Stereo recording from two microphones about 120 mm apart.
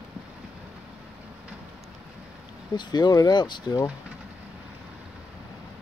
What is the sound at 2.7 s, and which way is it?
Speech, 40° left (ahead or behind).